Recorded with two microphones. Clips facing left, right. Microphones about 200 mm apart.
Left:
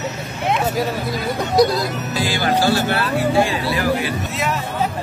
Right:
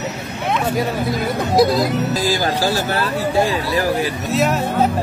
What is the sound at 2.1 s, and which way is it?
Speech, 40° right (ahead or behind).